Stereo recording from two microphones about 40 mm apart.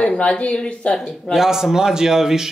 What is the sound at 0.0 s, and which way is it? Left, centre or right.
Speech, left.